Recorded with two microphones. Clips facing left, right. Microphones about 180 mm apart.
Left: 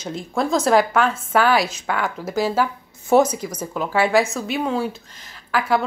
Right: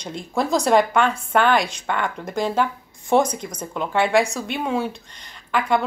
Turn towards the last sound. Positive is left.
turn(degrees=5)  # may be behind; listen again after turning